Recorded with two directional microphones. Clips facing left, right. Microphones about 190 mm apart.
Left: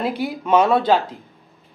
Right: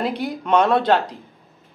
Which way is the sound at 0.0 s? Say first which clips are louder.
Left 1 dB; centre (ahead or behind).